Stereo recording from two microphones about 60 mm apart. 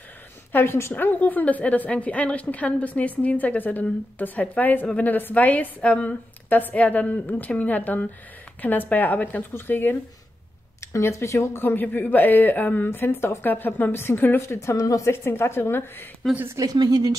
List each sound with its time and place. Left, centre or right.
0.5 s speech: left
0.9 s a woman's voice: left
9.5 s speech: left
10.8 s speech: left
14.5 s a woman's voice: left
16.5 s a woman's voice: right